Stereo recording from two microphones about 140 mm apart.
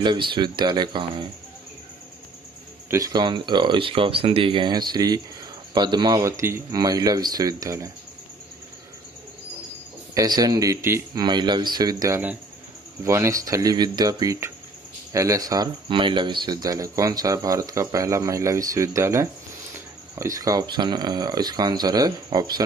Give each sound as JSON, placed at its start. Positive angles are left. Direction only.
{"t": 0.0, "sound": "speech", "side_deg": -35}
{"t": 2.9, "sound": "speech", "side_deg": -25}
{"t": 10.1, "sound": "speech", "side_deg": -30}
{"t": 11.2, "sound": "speech", "side_deg": -30}